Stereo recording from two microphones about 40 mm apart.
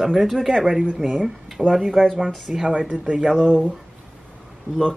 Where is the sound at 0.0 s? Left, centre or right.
Centre.